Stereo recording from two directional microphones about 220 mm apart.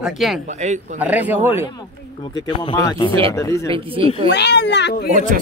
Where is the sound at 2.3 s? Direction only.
20° left (ahead or behind).